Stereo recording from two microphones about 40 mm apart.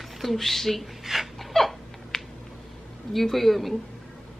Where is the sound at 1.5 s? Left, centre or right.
Centre.